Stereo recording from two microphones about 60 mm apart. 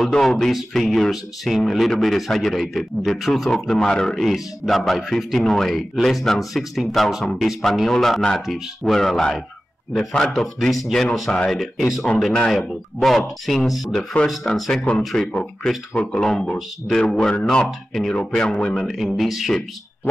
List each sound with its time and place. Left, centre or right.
0.0 s speech: centre
18.9 s speech: centre